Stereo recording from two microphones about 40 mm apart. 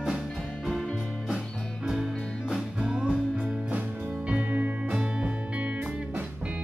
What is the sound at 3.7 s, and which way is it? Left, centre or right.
Music, right.